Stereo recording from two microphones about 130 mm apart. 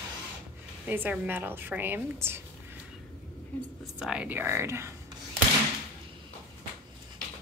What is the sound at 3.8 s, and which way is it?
A woman's voice, 5° right (ahead or behind).